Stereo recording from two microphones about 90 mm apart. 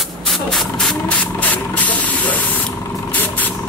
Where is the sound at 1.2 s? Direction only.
15° left (ahead or behind).